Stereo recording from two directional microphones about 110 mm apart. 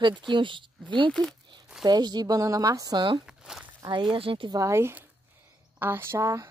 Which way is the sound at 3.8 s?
45° right (ahead or behind).